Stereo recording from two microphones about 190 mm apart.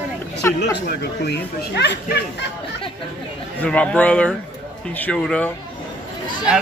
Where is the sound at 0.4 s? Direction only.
10° left (ahead or behind).